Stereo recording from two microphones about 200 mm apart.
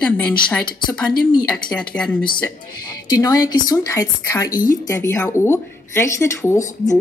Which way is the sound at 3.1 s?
20° left (ahead or behind).